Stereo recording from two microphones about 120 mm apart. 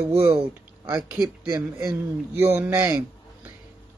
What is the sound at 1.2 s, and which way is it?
Speech, 25° right (ahead or behind).